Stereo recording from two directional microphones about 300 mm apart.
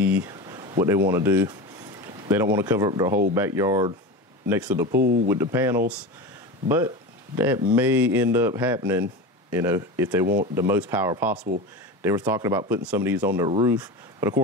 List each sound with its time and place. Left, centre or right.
0.0 s a sound: centre
3.3 s speech: centre
4.9 s speech: right
5.3 s speech: centre
7.3 s speech: centre